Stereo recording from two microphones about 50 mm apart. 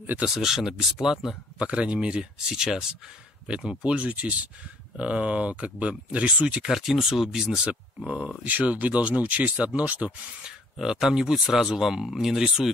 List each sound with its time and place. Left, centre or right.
0.3 s speech: centre
1.6 s speech: right
6.7 s speech: centre
8.5 s speech: right
10.4 s speech: centre